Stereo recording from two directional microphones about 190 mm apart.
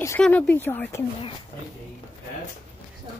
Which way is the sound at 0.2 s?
10° left (ahead or behind).